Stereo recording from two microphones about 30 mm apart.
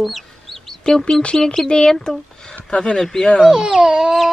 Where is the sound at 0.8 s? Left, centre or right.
Left.